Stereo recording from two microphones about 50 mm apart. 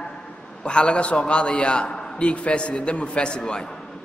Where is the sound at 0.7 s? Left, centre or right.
Centre.